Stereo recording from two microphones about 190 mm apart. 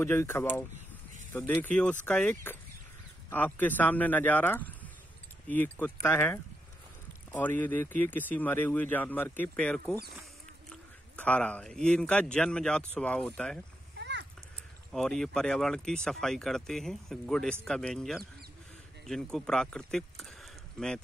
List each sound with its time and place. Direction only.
0.0 s speech: 15° left (ahead or behind)
13.9 s a sound: 65° right (ahead or behind)
14.9 s speech: centre (ahead or behind)